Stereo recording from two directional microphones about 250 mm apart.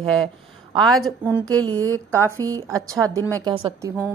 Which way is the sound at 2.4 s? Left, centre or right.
Centre.